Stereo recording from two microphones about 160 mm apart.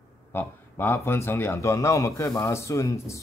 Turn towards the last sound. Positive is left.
turn(degrees=20)  # may be behind; listen again after turning